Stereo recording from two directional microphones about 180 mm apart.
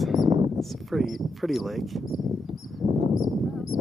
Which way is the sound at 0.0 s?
Centre (ahead or behind).